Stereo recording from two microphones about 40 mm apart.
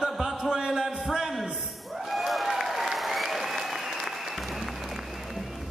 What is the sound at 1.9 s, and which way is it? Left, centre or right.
Applause, centre.